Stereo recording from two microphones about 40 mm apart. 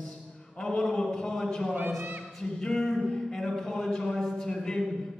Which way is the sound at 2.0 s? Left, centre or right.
Right.